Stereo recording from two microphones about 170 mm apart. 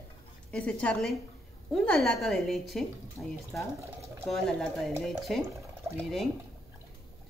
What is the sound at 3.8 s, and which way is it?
Pour, 15° right (ahead or behind).